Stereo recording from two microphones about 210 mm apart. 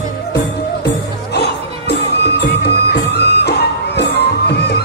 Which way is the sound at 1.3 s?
50° left (ahead or behind).